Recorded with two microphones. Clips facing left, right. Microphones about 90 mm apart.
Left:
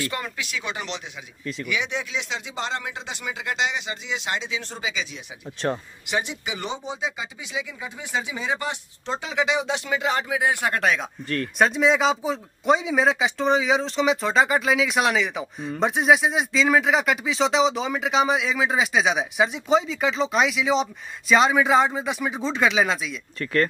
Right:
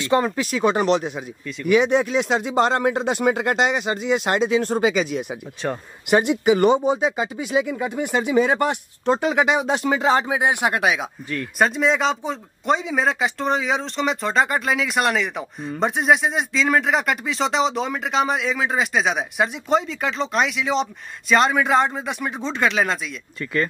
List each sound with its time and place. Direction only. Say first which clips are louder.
0.0 s speech: right 10 dB; 30° right (ahead or behind); by 23.7 s centre (ahead or behind)